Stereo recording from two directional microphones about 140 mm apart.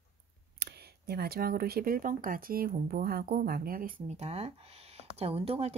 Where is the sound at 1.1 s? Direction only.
90° right.